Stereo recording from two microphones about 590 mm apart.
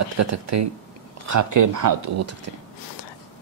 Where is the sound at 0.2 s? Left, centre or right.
Right.